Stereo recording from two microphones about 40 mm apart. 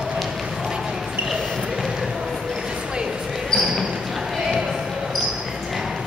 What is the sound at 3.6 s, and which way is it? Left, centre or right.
Basketball bounce, centre.